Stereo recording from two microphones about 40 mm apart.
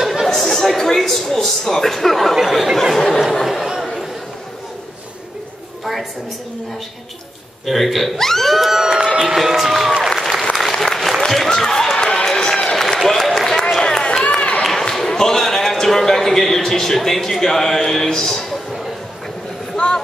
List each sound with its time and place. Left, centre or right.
0.0 s chatter: centre
0.3 s chatter: centre
0.7 s a man's voice: centre
7.6 s a man's voice: centre
8.9 s a sound: centre
9.4 s a sound: centre
10.0 s applause: centre
11.1 s run: centre
12.9 s a sound: centre
13.7 s run: centre
14.6 s a sound: centre
19.8 s speech: left